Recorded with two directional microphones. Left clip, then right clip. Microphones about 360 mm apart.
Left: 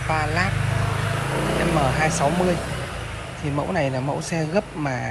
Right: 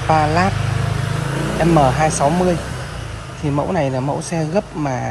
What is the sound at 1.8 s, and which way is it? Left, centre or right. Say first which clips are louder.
Speech: right 7 dB; centre.